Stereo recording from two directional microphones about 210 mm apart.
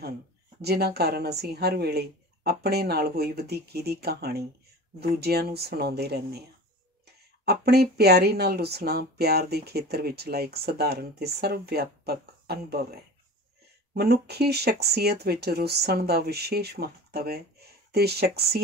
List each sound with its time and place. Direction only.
0.6 s speech: 50° right (ahead or behind)
7.4 s speech: 50° right (ahead or behind)